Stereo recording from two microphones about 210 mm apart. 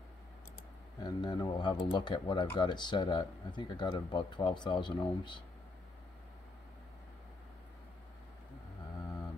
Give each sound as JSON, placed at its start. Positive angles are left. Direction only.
{"t": 1.0, "sound": "speech", "side_deg": 20}